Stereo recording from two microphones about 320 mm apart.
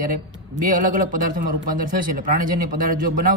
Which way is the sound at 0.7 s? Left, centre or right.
Right.